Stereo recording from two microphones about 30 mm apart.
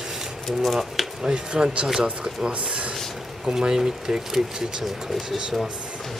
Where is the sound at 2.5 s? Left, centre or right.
Right.